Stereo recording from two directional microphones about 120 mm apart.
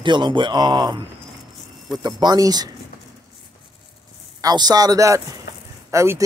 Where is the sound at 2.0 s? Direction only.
35° right (ahead or behind).